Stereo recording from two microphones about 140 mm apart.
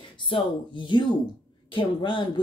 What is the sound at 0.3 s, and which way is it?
Speech, 35° left (ahead or behind).